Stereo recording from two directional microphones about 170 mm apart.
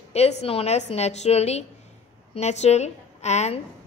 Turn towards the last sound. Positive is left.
turn(degrees=40)  # may be behind; listen again after turning